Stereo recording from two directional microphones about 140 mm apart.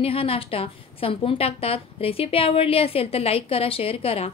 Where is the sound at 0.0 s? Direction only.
40° left (ahead or behind).